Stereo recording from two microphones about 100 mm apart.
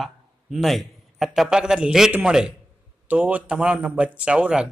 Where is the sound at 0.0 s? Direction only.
Centre (ahead or behind).